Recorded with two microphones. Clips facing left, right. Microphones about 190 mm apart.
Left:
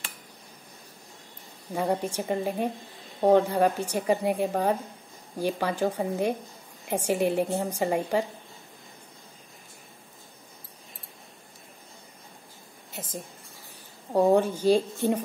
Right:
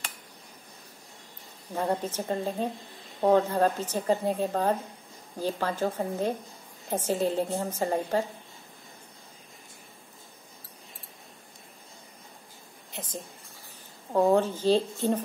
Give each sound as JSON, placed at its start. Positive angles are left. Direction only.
{"t": 1.7, "sound": "a woman's voice", "side_deg": 10}
{"t": 14.1, "sound": "a woman's voice", "side_deg": 10}